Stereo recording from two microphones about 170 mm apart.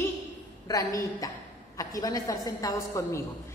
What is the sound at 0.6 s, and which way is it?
A woman's voice, 20° left (ahead or behind).